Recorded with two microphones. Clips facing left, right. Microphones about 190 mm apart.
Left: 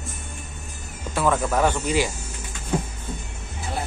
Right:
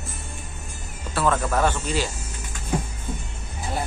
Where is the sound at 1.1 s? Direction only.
10° left (ahead or behind).